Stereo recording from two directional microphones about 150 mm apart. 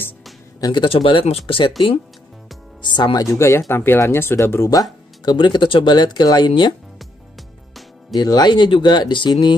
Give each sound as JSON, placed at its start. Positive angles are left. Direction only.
{"t": 0.6, "sound": "speech", "side_deg": 30}
{"t": 2.8, "sound": "speech", "side_deg": 30}
{"t": 8.1, "sound": "speech", "side_deg": 25}